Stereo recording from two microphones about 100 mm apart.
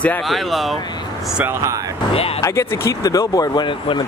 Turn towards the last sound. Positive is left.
turn(degrees=55)  # may be behind; listen again after turning